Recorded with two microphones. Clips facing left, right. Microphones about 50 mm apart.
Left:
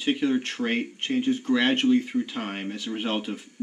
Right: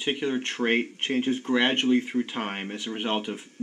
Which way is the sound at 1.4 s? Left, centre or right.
Centre.